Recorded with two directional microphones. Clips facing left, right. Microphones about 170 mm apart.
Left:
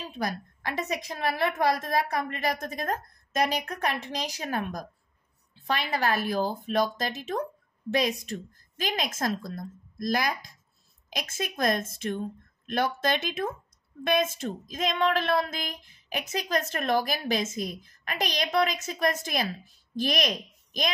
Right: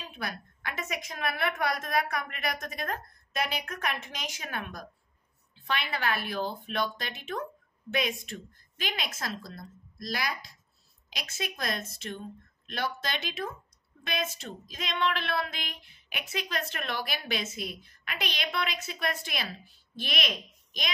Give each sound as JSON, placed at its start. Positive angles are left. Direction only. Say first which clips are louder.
{"t": 0.1, "sound": "a woman's voice", "louder": "left 7 dB", "side_deg": 35}